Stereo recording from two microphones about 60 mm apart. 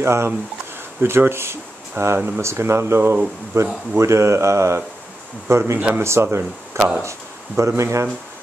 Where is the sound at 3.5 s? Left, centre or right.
Right.